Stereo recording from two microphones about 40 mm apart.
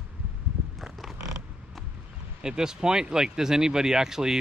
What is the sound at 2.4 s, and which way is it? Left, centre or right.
Speech, centre.